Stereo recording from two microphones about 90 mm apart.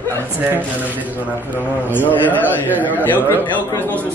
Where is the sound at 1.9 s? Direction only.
20° left (ahead or behind).